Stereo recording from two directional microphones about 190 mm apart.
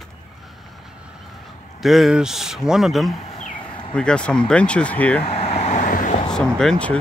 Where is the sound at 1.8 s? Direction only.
Centre (ahead or behind).